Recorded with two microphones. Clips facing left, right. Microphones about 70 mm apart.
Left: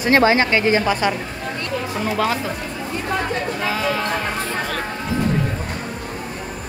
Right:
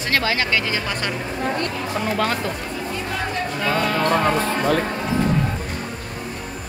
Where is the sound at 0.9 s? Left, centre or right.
Centre.